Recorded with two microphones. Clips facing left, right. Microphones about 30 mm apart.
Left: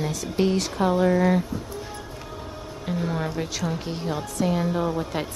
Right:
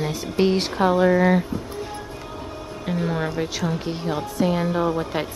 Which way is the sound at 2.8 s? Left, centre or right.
Centre.